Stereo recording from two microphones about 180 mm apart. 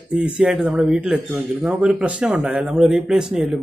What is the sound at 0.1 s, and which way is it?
Speech, 5° right (ahead or behind).